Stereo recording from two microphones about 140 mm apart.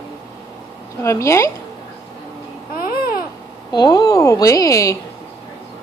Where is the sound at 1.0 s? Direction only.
20° left (ahead or behind).